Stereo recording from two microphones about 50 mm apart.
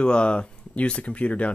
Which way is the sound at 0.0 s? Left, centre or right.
Left.